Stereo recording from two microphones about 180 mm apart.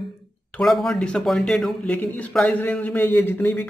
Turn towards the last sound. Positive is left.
turn(degrees=10)  # may be behind; listen again after turning